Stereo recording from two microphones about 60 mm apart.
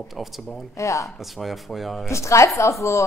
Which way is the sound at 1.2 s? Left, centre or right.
Centre.